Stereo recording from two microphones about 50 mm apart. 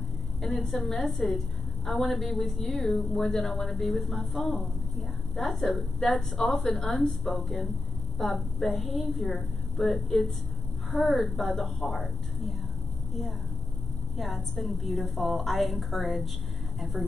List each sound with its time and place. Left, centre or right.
0.4 s a woman's voice: centre
14.1 s a woman's voice: centre